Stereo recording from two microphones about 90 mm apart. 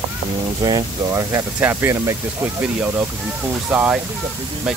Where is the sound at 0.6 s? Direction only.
50° right (ahead or behind).